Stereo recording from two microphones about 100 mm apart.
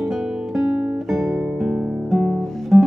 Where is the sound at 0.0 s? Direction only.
5° right (ahead or behind).